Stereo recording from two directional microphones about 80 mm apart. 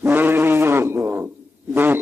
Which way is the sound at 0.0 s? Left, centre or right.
Right.